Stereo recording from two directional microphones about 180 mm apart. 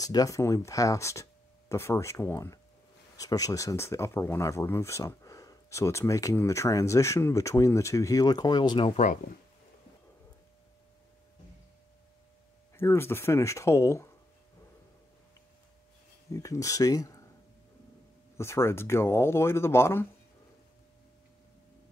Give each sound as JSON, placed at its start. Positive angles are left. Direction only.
{"t": 0.0, "sound": "speech", "side_deg": 20}
{"t": 12.7, "sound": "speech", "side_deg": 15}
{"t": 16.3, "sound": "speech", "side_deg": 20}
{"t": 18.4, "sound": "speech", "side_deg": 15}